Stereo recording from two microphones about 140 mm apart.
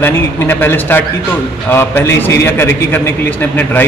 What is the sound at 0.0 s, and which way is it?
A man's voice, 15° left (ahead or behind).